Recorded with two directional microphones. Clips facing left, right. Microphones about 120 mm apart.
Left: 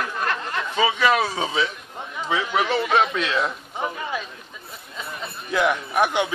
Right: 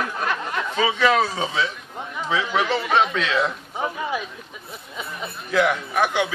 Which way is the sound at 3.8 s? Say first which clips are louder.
Right 2 dB; 10° right (ahead or behind).